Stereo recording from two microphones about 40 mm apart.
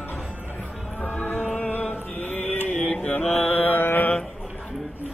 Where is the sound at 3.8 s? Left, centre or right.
Left.